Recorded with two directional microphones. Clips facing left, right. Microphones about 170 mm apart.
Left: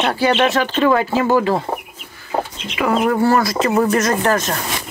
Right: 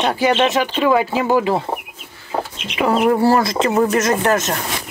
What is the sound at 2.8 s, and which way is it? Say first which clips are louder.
Speech: right 1 dB; 30° right (ahead or behind).